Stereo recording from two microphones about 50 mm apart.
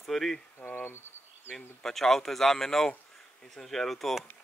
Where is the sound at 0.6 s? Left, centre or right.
Left.